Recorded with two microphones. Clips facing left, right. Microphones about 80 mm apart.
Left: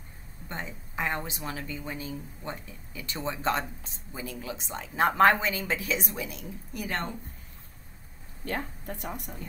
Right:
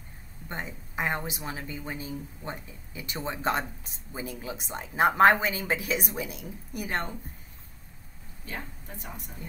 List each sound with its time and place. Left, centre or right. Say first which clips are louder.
0.5 s a woman's voice: right 1 dB; centre
8.5 s speech: left 6 dB; left